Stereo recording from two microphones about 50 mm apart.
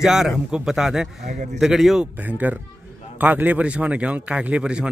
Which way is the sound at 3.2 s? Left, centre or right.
Right.